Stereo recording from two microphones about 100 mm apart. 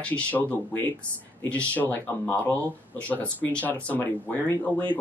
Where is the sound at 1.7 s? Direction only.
20° left (ahead or behind).